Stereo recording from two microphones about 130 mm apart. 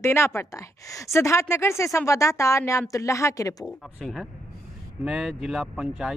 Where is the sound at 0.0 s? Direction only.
20° left (ahead or behind).